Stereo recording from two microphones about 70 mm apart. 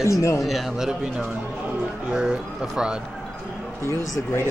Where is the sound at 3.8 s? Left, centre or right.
Left.